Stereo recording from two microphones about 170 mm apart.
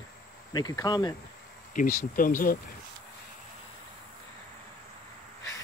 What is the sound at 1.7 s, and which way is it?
Speech, 55° left (ahead or behind).